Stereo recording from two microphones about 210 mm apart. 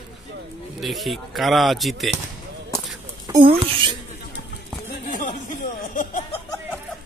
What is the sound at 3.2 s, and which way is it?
Speech, 20° right (ahead or behind).